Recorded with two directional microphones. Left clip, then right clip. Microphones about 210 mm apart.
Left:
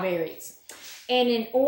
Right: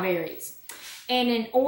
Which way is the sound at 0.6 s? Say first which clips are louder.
Right 1 dB; 20° right (ahead or behind).